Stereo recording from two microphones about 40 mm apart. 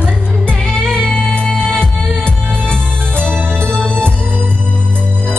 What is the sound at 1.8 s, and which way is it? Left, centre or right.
Music, left.